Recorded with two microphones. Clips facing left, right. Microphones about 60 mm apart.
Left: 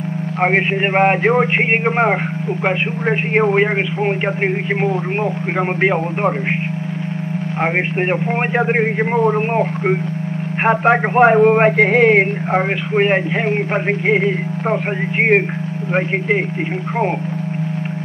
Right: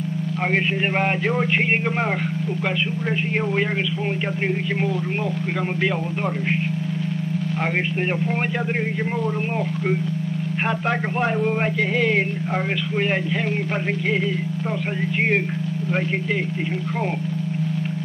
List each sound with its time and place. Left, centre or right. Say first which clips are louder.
0.4 s speech: left 7 dB; left
3.1 s speech: left 11 dB; left
5.8 s speech: left 7 dB; left
8.5 s speech: left 8 dB; left